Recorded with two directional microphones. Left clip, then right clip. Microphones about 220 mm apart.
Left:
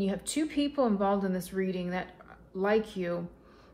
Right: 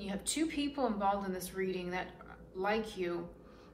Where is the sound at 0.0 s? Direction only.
45° left (ahead or behind).